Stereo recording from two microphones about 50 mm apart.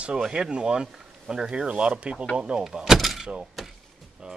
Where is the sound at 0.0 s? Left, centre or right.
Centre.